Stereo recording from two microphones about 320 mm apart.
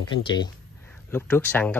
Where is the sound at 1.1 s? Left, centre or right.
Centre.